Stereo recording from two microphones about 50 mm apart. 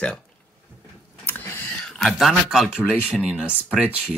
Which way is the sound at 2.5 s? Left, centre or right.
Centre.